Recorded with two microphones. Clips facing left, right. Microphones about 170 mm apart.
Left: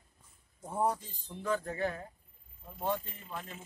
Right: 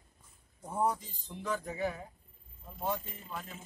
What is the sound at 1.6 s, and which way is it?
Speech, 10° right (ahead or behind).